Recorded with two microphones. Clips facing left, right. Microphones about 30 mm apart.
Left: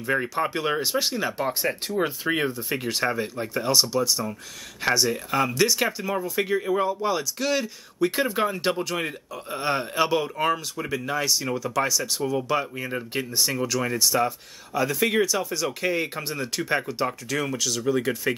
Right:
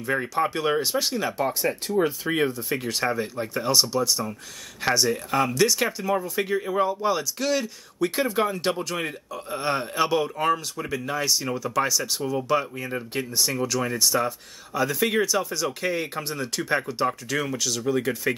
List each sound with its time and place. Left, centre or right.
0.0 s speech: centre
1.5 s speech: left
2.2 s speech: centre